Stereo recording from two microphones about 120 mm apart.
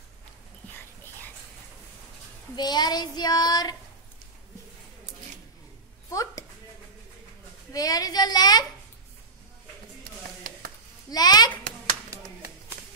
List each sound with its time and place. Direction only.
2.5 s child singing: 35° left (ahead or behind)
6.0 s a sound: 30° left (ahead or behind)
7.7 s child singing: 30° left (ahead or behind)
11.1 s child singing: 35° left (ahead or behind)
12.1 s clapping: 25° right (ahead or behind)